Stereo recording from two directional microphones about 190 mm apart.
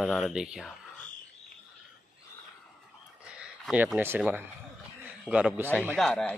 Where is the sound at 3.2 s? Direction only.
5° right (ahead or behind).